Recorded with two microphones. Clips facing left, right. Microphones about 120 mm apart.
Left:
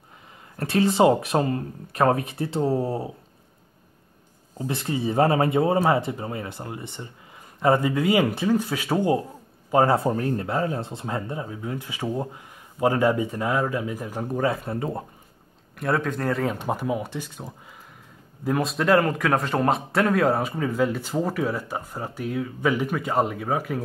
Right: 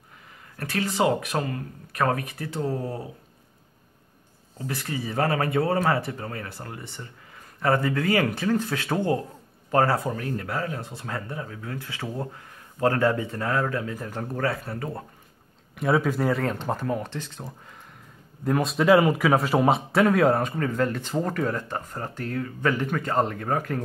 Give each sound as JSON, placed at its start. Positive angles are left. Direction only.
{"t": 0.6, "sound": "speech", "side_deg": 25}
{"t": 4.6, "sound": "speech", "side_deg": 25}
{"t": 9.9, "sound": "speech", "side_deg": 30}
{"t": 15.7, "sound": "a man's voice", "side_deg": 0}
{"t": 16.5, "sound": "a man's voice", "side_deg": 10}